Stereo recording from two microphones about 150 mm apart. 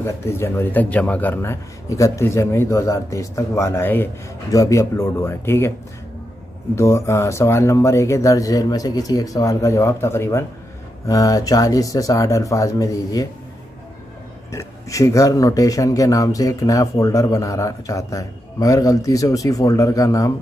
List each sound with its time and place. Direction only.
0.0 s a man's voice: 15° left (ahead or behind)
6.7 s speech: 20° left (ahead or behind)
14.5 s speech: 20° left (ahead or behind)